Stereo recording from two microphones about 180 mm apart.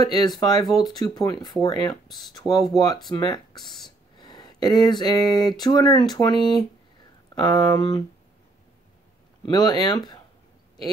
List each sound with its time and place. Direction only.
0.0 s speech: 20° left (ahead or behind)
7.3 s speech: 25° left (ahead or behind)
9.5 s speech: 25° left (ahead or behind)